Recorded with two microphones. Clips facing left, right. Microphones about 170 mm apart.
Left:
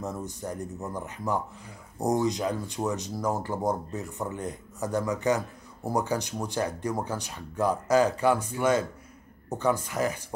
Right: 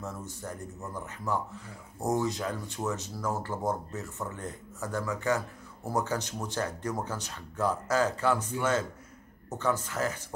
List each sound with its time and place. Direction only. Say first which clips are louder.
0.0 s speech: left 5 dB; 15° left (ahead or behind)